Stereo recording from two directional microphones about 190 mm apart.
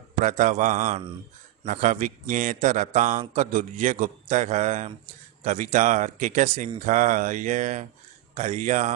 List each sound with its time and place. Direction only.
0.2 s a man's voice: 40° right (ahead or behind)